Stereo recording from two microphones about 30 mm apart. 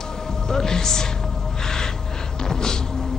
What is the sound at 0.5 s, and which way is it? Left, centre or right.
Speech, centre.